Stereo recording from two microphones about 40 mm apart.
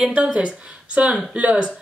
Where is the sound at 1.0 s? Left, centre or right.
Right.